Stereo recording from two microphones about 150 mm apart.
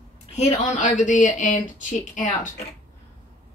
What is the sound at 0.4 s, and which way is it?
Speech, 55° left (ahead or behind).